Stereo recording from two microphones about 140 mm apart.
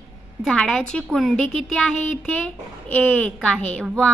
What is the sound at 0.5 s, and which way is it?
A child's voice, 5° left (ahead or behind).